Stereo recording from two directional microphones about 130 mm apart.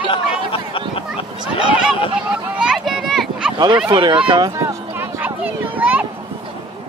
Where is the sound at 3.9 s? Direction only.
35° right (ahead or behind).